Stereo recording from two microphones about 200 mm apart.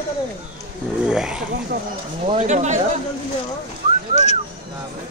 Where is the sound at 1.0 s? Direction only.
5° right (ahead or behind).